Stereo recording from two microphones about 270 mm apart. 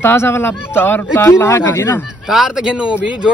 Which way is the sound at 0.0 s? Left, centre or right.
Centre.